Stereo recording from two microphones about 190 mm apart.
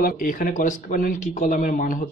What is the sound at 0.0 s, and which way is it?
Speech, 45° left (ahead or behind).